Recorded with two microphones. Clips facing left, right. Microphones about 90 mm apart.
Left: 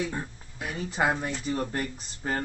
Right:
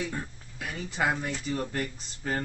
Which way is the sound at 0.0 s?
20° left (ahead or behind).